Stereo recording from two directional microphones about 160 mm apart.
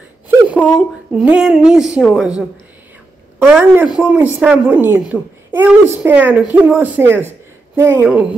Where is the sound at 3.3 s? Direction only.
10° right (ahead or behind).